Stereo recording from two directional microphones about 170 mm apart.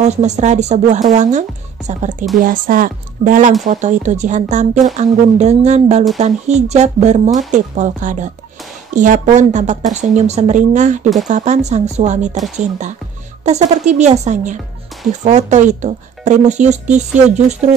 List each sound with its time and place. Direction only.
0.0 s speech: 40° right (ahead or behind)